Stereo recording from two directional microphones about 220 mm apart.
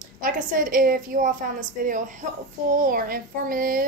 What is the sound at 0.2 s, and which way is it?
A woman's voice, 40° right (ahead or behind).